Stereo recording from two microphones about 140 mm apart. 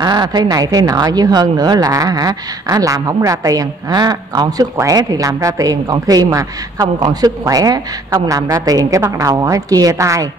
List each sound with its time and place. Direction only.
0.0 s speech: 30° right (ahead or behind)